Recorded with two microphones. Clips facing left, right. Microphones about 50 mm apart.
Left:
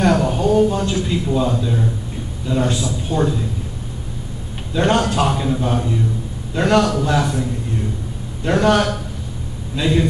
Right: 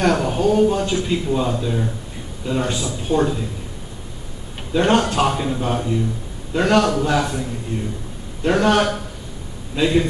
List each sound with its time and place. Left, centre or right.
0.0 s a man's voice: centre
2.7 s a man's voice: right
4.7 s a man's voice: centre
5.3 s a man's voice: centre
8.5 s a man's voice: centre